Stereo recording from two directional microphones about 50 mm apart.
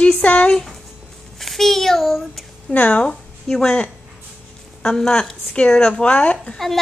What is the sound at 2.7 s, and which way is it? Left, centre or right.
Speech, left.